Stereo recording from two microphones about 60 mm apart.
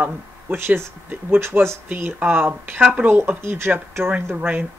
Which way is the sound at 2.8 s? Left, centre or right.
Right.